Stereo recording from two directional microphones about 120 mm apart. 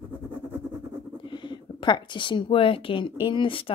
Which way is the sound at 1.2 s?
40° left (ahead or behind).